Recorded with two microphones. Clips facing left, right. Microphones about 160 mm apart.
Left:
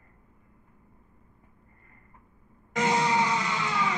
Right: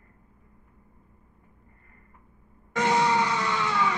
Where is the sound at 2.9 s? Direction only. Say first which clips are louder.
Right 2 dB; 15° left (ahead or behind).